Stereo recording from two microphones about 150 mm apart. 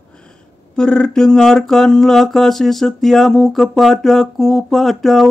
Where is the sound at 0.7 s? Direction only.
5° left (ahead or behind).